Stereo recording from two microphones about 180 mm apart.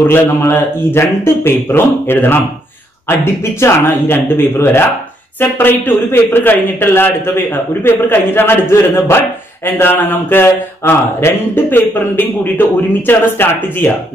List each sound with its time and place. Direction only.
0.0 s speech: 15° left (ahead or behind)
3.6 s speech: 15° left (ahead or behind)